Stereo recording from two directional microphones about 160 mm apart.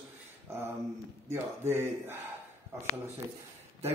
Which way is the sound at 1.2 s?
15° right (ahead or behind).